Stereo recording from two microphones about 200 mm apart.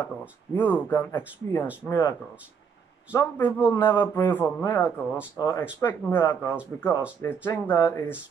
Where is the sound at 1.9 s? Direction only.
20° left (ahead or behind).